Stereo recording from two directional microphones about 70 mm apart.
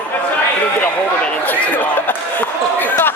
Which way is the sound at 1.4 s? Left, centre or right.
Left.